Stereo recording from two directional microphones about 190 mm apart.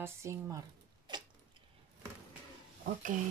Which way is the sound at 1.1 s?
25° right (ahead or behind).